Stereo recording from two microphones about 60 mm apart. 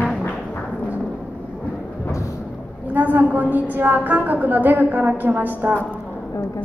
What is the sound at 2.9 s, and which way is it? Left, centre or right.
A woman's voice, right.